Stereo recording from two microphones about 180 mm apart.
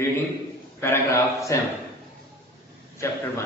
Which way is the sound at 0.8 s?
15° left (ahead or behind).